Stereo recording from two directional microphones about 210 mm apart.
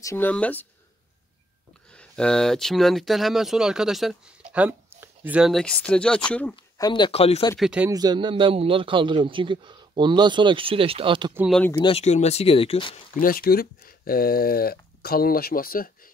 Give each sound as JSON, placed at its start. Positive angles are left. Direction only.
{"t": 0.0, "sound": "speech", "side_deg": 10}
{"t": 1.9, "sound": "speech", "side_deg": 5}
{"t": 6.5, "sound": "speech", "side_deg": 20}
{"t": 7.5, "sound": "speech", "side_deg": -5}
{"t": 7.9, "sound": "a man's voice", "side_deg": -20}
{"t": 11.3, "sound": "speech", "side_deg": -5}
{"t": 11.8, "sound": "speech", "side_deg": 30}
{"t": 13.2, "sound": "speech", "side_deg": 45}